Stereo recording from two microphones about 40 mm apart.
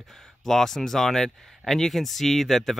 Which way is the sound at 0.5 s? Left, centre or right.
Centre.